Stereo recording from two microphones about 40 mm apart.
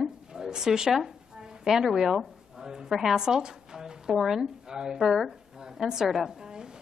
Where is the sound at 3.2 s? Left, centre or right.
Centre.